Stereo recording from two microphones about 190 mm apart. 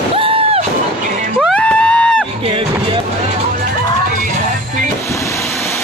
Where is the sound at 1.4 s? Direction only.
5° left (ahead or behind).